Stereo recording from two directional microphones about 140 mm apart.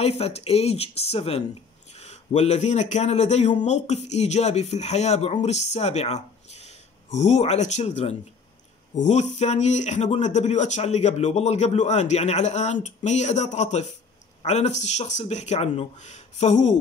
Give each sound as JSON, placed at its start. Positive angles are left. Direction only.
{"t": 0.0, "sound": "speech", "side_deg": 45}